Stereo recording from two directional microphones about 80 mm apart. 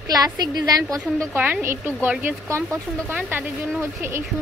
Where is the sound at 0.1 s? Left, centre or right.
Right.